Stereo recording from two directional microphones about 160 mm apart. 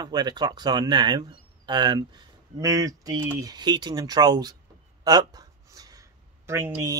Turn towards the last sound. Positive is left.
turn(degrees=-15)  # may be behind; listen again after turning